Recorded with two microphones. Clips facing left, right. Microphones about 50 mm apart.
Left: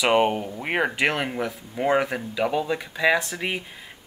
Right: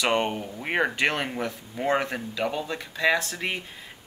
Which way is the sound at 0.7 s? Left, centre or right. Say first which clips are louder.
Left 1 dB; centre.